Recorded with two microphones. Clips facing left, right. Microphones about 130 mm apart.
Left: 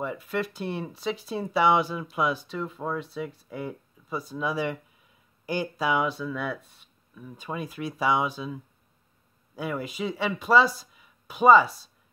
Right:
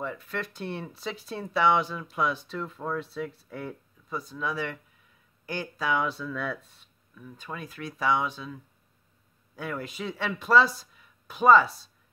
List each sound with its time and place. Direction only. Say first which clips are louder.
0.0 s speech: left 4 dB; 10° left (ahead or behind)
9.6 s speech: left 4 dB; 5° left (ahead or behind)